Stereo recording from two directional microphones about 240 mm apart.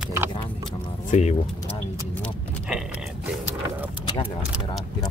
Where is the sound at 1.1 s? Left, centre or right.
Left.